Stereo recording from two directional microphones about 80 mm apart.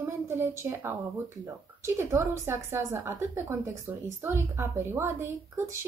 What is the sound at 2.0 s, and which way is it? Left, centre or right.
A woman's voice, right.